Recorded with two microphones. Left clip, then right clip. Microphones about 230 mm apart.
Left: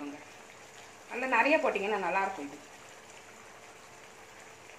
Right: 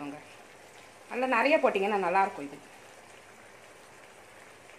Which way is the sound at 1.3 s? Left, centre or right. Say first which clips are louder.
Right 1 dB; right.